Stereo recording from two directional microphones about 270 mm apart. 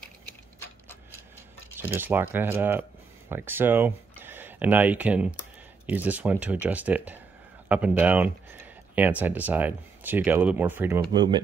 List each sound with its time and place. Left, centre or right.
1.8 s speech: centre
11.0 s speech: centre